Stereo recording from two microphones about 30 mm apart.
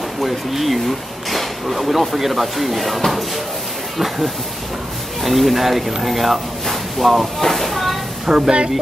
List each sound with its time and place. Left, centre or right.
0.2 s speech: centre
5.2 s speech: centre
7.4 s a sound: centre
8.3 s speech: right